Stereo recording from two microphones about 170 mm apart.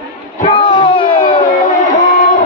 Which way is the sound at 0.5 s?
30° left (ahead or behind).